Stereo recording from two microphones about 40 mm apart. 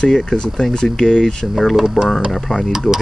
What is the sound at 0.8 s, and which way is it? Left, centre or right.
Speech, centre.